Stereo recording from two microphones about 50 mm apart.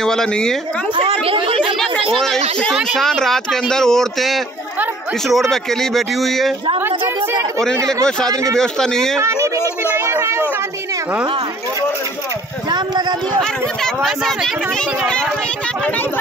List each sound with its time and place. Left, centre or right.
0.0 s speech: centre
1.8 s a sound: centre
3.0 s speech: centre
7.7 s speech: right
8.5 s speech: centre
9.9 s a sound: right
14.0 s speech: centre